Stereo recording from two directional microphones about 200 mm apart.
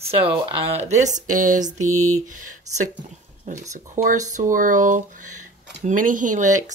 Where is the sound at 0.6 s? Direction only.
30° right (ahead or behind).